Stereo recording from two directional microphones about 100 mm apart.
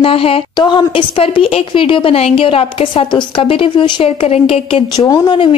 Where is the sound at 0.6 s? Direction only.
50° left (ahead or behind).